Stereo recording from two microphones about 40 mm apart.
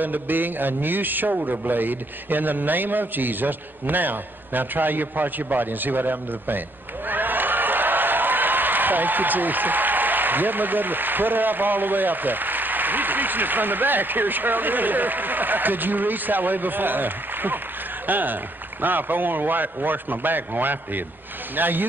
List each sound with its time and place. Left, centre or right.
0.0 s a man's voice: right